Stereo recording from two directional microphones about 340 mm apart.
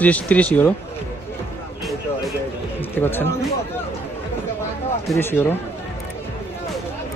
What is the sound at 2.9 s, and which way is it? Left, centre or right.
Speech, centre.